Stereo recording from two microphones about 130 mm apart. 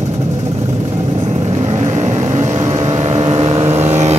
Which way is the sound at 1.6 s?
55° right (ahead or behind).